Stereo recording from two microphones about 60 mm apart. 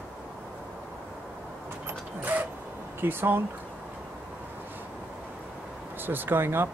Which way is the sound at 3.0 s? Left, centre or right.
Right.